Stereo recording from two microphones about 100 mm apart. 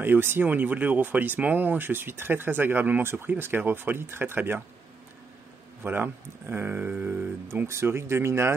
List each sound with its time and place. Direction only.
0.0 s speech: 20° right (ahead or behind)
5.8 s speech: 20° right (ahead or behind)